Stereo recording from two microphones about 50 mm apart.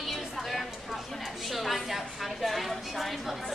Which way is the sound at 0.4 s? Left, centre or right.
Centre.